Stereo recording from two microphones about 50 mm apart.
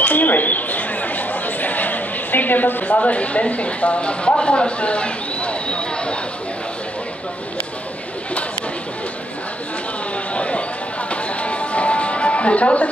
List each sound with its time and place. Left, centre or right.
0.0 s chatter: left
3.0 s speech: left
10.3 s a sound: left
11.1 s music: left